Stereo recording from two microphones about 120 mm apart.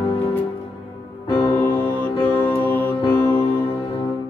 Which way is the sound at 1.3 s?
15° left (ahead or behind).